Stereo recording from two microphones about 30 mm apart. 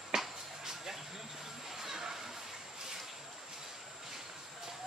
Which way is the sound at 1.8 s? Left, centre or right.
Centre.